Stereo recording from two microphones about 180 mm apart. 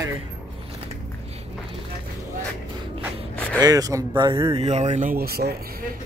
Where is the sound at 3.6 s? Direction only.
20° right (ahead or behind); by 5.1 s 40° right (ahead or behind).